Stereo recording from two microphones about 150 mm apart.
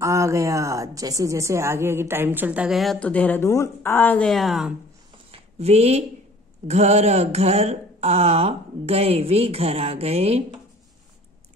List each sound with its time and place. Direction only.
0.0 s a woman's voice: 20° right (ahead or behind); by 4.7 s centre (ahead or behind)
5.3 s a sound: 45° right (ahead or behind)
6.7 s speech: 45° right (ahead or behind)